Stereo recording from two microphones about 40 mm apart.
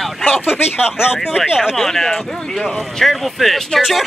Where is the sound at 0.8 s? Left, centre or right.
Centre.